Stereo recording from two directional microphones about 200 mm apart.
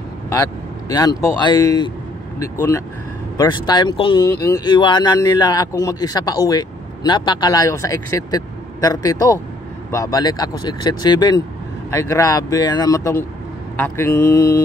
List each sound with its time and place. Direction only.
0.3 s speech: 15° left (ahead or behind)